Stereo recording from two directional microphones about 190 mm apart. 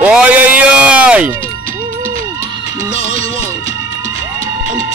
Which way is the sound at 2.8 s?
35° left (ahead or behind).